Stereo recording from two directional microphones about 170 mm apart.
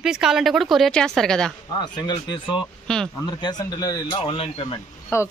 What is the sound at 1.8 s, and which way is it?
Speech, 25° left (ahead or behind).